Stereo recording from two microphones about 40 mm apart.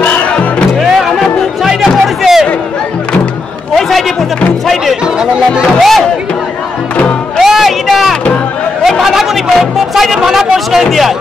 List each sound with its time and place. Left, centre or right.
0.0 s music: left
0.7 s music: centre
5.0 s speech: centre
5.8 s speech: centre
7.3 s music: centre